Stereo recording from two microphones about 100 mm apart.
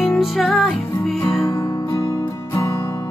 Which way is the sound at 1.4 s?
30° left (ahead or behind).